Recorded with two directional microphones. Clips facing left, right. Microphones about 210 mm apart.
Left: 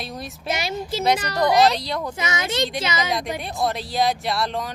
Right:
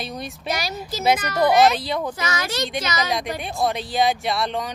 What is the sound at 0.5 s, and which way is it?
Speech, 25° left (ahead or behind).